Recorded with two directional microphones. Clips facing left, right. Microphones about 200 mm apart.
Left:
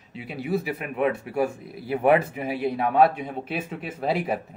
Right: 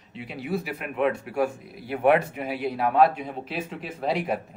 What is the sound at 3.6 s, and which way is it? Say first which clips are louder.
Speech: left 1 dB; 5° left (ahead or behind).